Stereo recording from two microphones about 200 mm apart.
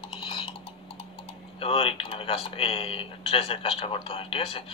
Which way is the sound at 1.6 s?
30° left (ahead or behind).